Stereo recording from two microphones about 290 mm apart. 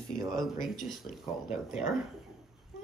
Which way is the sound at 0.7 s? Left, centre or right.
Centre.